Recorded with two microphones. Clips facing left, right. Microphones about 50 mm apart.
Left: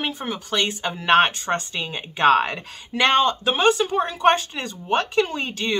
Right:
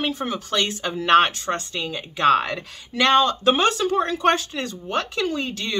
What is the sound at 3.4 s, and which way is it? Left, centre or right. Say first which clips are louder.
Speech: even; centre.